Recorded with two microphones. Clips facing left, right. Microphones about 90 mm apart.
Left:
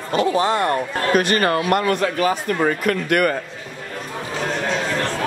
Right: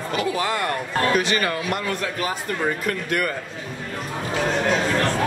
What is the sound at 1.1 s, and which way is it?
Speech, 50° left (ahead or behind).